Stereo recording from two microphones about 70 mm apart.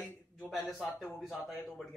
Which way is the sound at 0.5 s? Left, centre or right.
Centre.